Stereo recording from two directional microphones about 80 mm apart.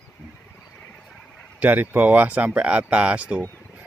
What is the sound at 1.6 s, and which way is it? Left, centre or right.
Speech, right.